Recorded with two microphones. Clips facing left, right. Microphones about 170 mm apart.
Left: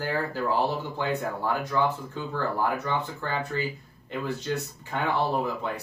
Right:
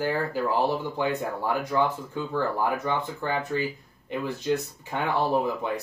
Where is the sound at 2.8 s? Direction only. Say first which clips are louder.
Right 2 dB; 15° right (ahead or behind).